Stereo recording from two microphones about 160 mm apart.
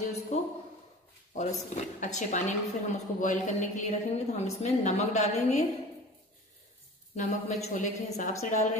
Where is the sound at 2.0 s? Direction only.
50° left (ahead or behind).